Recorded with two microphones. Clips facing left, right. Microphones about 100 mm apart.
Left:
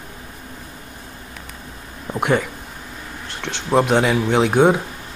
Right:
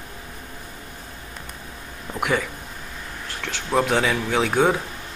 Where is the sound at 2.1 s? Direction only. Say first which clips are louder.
Left 4 dB; 20° left (ahead or behind).